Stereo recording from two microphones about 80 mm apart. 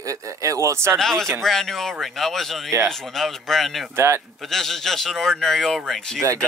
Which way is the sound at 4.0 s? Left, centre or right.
Right.